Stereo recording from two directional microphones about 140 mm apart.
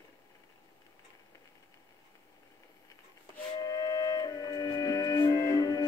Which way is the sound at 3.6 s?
25° left (ahead or behind).